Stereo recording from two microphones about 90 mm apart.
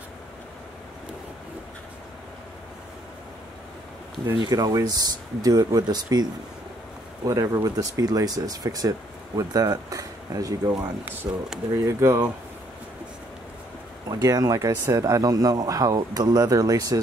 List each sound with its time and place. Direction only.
4.4 s speech: 45° right (ahead or behind)
7.2 s speech: 40° right (ahead or behind)
10.7 s speech: 10° right (ahead or behind)
11.8 s speech: 30° right (ahead or behind)
14.0 s speech: 40° right (ahead or behind)